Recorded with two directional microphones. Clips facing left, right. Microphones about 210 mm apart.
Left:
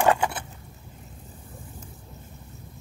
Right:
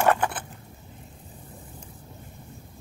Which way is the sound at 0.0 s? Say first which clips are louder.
Left 1 dB; 15° left (ahead or behind).